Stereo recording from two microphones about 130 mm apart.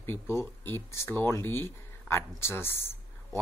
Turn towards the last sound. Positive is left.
turn(degrees=20)  # may be behind; listen again after turning